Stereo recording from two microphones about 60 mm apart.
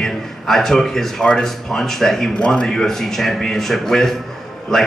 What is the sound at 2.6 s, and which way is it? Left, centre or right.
Speech, centre.